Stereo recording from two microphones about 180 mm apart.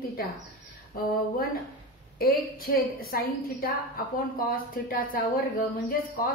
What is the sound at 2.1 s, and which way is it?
A woman's voice, 55° left (ahead or behind).